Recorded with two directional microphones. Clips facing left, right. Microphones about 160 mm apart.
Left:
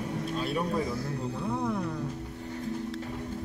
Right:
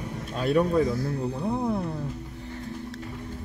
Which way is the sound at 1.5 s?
30° right (ahead or behind).